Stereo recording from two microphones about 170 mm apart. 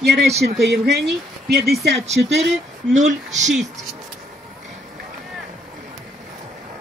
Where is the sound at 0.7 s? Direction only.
80° right.